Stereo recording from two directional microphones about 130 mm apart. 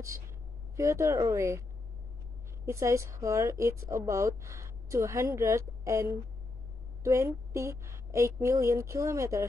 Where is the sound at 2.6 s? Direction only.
25° right (ahead or behind).